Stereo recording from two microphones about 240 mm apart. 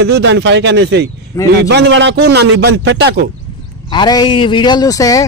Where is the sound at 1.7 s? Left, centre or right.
Right.